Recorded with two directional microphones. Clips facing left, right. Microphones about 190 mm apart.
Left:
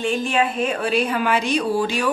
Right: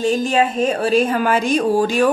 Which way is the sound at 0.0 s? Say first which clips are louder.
Right 4 dB; 40° right (ahead or behind).